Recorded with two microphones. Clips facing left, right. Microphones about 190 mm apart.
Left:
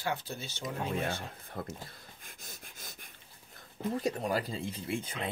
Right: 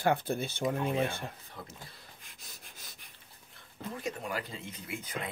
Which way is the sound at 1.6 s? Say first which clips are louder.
Left 9 dB; 50° left (ahead or behind).